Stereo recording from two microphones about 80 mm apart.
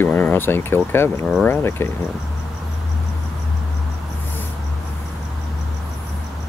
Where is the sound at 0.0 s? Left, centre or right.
Left.